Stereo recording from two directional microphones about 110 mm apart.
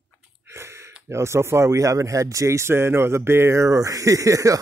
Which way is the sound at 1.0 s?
25° right (ahead or behind).